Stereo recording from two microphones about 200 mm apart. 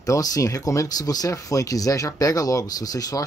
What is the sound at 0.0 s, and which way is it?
Speech, 15° left (ahead or behind).